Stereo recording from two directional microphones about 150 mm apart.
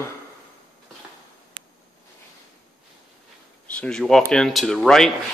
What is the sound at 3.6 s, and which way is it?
Speech, 10° left (ahead or behind).